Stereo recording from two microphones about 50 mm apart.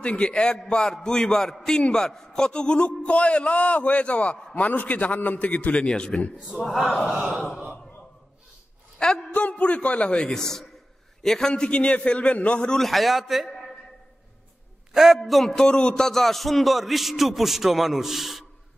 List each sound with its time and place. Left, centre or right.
0.0 s a man's voice: left
6.6 s speech: centre
9.3 s a man's voice: left
12.7 s speech: centre
14.9 s a sound: centre
15.2 s speech: centre
15.6 s speech: centre